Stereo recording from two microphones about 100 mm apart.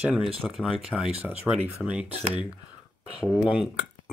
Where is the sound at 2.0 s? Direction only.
90° right.